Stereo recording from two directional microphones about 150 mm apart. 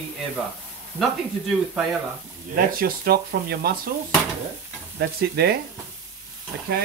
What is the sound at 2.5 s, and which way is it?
Speech, 75° right (ahead or behind).